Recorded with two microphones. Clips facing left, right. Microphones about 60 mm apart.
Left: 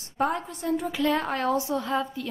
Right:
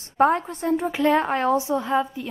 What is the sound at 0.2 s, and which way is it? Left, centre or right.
A woman's voice, right.